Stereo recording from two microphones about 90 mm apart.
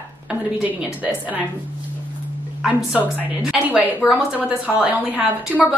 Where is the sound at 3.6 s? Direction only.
20° right (ahead or behind).